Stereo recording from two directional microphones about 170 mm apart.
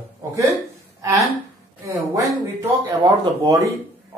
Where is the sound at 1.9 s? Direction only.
20° right (ahead or behind).